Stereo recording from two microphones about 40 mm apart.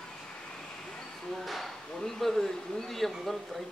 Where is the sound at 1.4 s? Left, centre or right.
Centre.